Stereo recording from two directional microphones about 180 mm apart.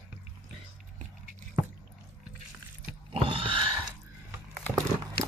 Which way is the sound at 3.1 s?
30° right (ahead or behind).